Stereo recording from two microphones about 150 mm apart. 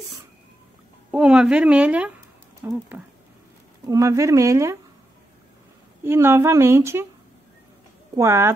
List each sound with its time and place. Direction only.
1.1 s speech: 5° right (ahead or behind)
3.8 s speech: 20° right (ahead or behind)
6.0 s speech: 15° right (ahead or behind)
8.2 s speech: 15° right (ahead or behind)